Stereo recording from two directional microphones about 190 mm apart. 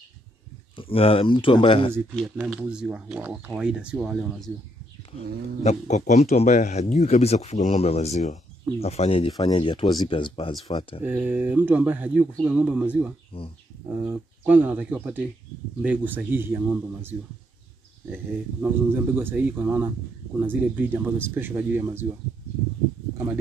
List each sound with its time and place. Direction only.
0.7 s speech: 30° left (ahead or behind)
2.3 s speech: 5° right (ahead or behind)
5.6 s speech: 35° left (ahead or behind)
11.1 s speech: 10° right (ahead or behind)
18.1 s speech: 10° right (ahead or behind)